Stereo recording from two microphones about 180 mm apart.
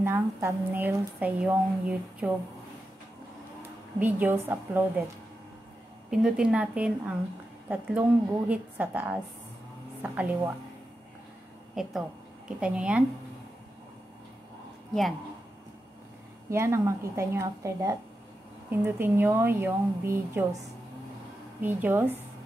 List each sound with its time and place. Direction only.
0.0 s a woman's voice: 15° right (ahead or behind)
4.0 s a woman's voice: 10° right (ahead or behind)
6.0 s a woman's voice: 5° right (ahead or behind)
11.7 s a woman's voice: centre (ahead or behind)
16.4 s a woman's voice: 15° right (ahead or behind)